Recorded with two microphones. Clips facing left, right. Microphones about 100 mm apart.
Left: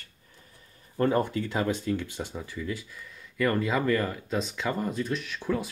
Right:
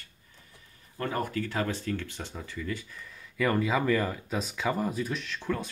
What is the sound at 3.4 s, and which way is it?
Speech, 5° right (ahead or behind).